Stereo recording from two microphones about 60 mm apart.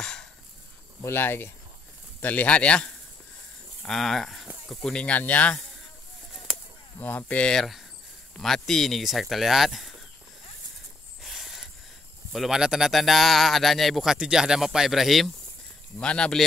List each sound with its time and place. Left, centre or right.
0.0 s a sound: centre
1.0 s speech: left
2.2 s speech: left
3.8 s speech: centre
5.0 s speech: left
7.0 s speech: left
7.5 s speech: centre
11.2 s a sound: centre
12.4 s speech: centre
14.1 s speech: centre
16.0 s speech: centre